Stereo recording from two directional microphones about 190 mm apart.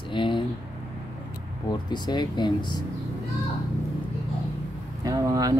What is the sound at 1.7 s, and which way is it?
Speech, 20° left (ahead or behind).